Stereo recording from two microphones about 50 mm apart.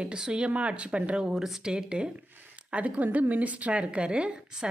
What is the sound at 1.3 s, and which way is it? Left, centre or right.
Speech, centre.